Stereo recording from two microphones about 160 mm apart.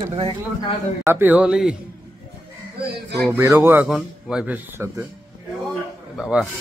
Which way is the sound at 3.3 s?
15° right (ahead or behind).